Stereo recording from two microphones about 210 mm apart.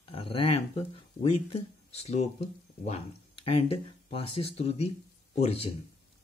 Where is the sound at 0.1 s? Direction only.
25° left (ahead or behind).